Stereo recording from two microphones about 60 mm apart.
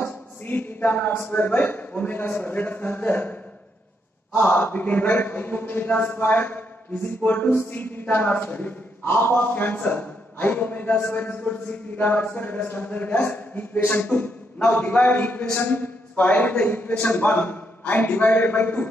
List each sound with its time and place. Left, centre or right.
0.0 s a sound: left
1.2 s a man's voice: left
4.4 s a man's voice: left